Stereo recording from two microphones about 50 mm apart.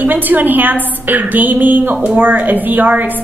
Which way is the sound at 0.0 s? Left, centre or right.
Right.